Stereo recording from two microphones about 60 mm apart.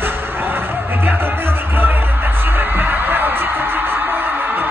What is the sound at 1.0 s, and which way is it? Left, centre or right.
Music, right.